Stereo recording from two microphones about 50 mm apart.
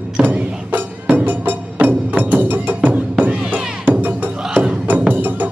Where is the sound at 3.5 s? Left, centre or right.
Right.